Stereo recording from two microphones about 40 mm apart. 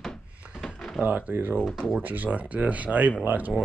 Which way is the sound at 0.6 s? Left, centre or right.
Left.